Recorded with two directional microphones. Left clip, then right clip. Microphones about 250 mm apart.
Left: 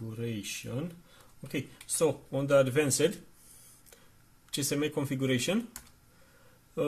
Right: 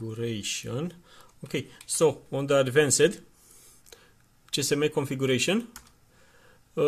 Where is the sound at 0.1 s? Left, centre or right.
Right.